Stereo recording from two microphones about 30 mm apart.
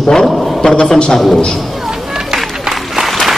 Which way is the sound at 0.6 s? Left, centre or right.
Left.